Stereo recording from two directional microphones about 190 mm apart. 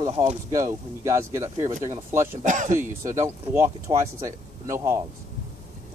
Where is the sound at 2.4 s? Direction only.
40° right (ahead or behind).